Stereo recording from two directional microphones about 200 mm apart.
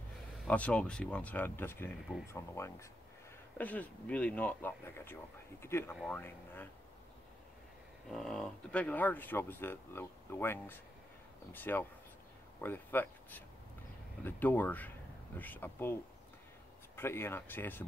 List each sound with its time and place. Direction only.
0.5 s speech: 5° left (ahead or behind)
8.1 s speech: 5° left (ahead or behind)